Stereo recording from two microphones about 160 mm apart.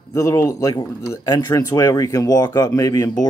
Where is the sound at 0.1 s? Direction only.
20° left (ahead or behind).